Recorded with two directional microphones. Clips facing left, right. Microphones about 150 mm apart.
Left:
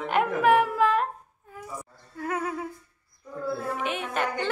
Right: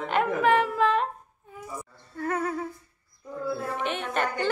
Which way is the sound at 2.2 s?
5° left (ahead or behind).